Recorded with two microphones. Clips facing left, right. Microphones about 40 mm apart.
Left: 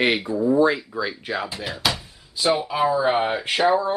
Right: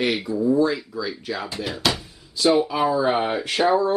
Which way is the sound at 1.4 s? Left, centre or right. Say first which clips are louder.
Right 3 dB; centre.